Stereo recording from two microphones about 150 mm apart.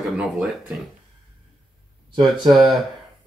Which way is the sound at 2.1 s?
30° right (ahead or behind).